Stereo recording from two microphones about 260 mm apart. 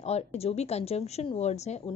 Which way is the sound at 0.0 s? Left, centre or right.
Left.